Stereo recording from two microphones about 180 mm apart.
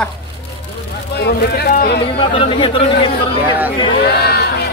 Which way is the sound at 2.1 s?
30° left (ahead or behind).